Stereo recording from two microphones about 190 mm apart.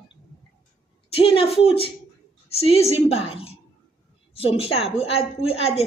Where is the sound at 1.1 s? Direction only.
30° left (ahead or behind).